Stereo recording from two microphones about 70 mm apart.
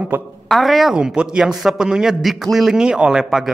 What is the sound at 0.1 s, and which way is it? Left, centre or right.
Speech, right.